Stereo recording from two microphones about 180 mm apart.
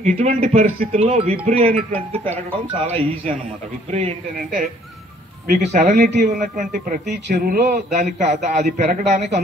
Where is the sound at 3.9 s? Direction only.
35° right (ahead or behind).